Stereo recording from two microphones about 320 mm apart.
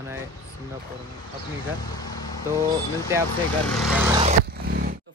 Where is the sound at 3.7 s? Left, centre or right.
Centre.